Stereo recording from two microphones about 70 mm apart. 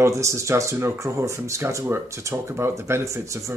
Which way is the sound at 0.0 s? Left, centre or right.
Right.